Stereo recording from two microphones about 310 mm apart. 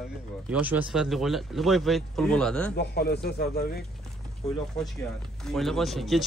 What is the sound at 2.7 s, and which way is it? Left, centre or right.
A man's voice, left.